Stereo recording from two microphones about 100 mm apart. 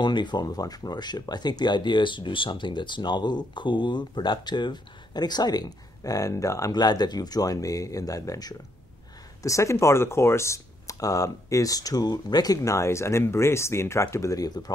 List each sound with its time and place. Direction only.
0.0 s speech: 50° left (ahead or behind)